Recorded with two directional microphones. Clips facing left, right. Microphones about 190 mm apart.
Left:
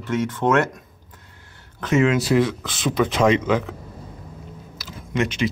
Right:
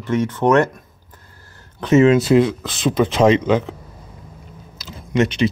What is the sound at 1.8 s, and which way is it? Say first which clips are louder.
Speech: right 6 dB; 25° right (ahead or behind).